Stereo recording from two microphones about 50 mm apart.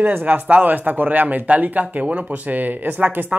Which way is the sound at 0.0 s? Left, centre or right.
Right.